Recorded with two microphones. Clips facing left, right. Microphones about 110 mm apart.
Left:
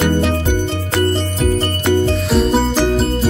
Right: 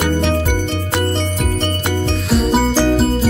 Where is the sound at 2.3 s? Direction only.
Centre (ahead or behind).